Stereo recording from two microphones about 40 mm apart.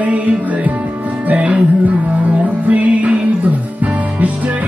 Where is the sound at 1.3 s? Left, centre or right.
Right.